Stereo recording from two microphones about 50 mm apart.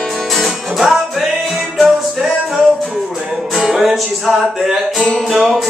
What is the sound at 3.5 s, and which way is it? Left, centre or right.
Music, centre.